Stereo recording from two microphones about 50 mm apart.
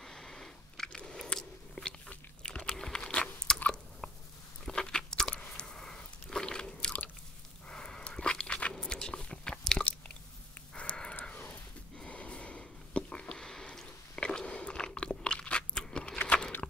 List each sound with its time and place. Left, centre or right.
0.0 s sniff: centre
0.8 s biting: centre
4.0 s a sound: centre
4.6 s crunch: centre
5.5 s biting: centre
10.7 s a sound: left
12.0 s sniff: left
15.8 s a sound: centre
16.2 s computer keyboard: left